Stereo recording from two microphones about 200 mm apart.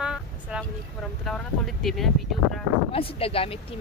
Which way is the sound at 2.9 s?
30° left (ahead or behind).